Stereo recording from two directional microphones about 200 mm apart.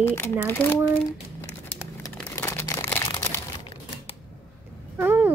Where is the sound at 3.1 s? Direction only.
15° left (ahead or behind).